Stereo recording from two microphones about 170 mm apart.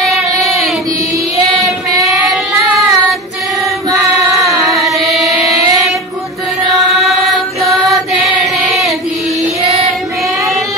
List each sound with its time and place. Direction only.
0.0 s child singing: centre (ahead or behind)
1.6 s child singing: centre (ahead or behind)
3.9 s carnatic music: 20° right (ahead or behind)
4.9 s carnatic music: centre (ahead or behind)
6.8 s mantra: centre (ahead or behind)
8.6 s chant: centre (ahead or behind)